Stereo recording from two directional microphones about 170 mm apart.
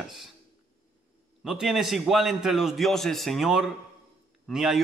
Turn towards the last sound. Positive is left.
turn(degrees=0)  # may be behind; listen again after turning